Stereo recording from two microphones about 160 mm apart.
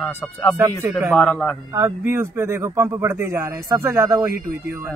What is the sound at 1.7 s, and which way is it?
Speech, 20° right (ahead or behind).